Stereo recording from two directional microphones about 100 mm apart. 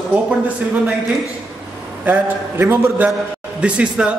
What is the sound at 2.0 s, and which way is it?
A man's voice, 20° right (ahead or behind).